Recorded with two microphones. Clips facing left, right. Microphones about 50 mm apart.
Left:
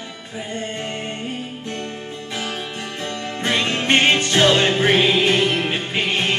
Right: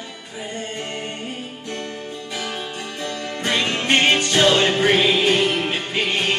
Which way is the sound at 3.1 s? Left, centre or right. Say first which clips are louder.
Left 1 dB; left.